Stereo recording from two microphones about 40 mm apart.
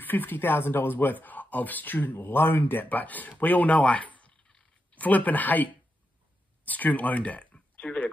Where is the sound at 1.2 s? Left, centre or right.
Left.